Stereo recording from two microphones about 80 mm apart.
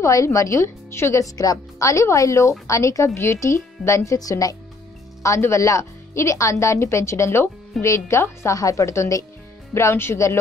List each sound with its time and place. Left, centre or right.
0.0 s speech: left